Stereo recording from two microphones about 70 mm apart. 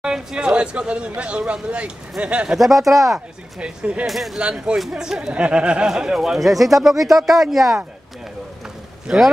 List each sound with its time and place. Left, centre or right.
0.0 s speech: centre
3.5 s speech: centre
4.0 s speech: centre
4.4 s speech: centre
9.0 s speech: centre